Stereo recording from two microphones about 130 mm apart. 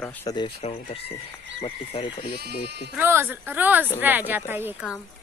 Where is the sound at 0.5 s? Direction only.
50° left (ahead or behind).